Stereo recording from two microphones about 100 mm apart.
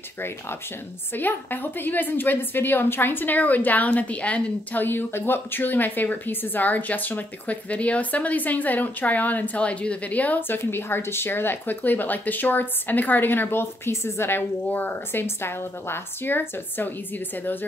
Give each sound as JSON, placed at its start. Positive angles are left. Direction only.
{"t": 1.1, "sound": "a woman's voice", "side_deg": 20}